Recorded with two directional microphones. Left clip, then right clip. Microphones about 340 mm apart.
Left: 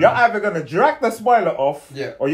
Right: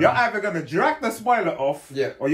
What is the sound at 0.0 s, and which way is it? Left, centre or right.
Speech, centre.